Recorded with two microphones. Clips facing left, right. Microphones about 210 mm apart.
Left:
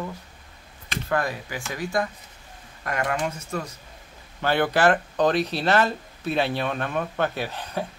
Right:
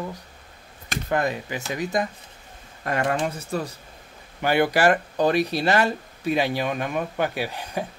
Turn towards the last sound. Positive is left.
turn(degrees=-10)  # may be behind; listen again after turning